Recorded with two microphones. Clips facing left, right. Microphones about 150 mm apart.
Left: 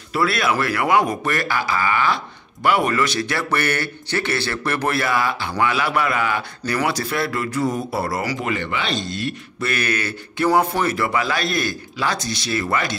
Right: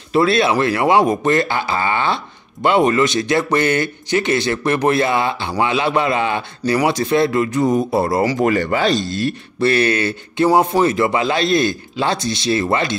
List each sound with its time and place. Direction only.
0.1 s speech: 25° right (ahead or behind)
8.4 s speech: 40° right (ahead or behind); by 12.9 s 25° right (ahead or behind)